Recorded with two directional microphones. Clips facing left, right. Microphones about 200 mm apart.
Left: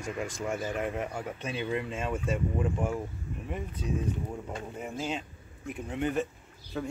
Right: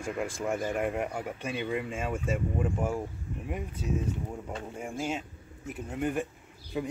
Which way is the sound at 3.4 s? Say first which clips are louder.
Right 1 dB; 10° right (ahead or behind).